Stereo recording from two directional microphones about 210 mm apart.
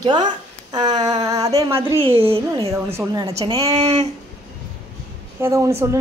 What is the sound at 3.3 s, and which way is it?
Speech, 25° right (ahead or behind).